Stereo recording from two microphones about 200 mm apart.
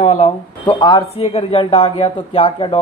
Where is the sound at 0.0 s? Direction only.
30° left (ahead or behind).